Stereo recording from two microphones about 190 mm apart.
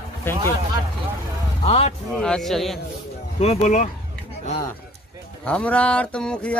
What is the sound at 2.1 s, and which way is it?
Speech, centre (ahead or behind).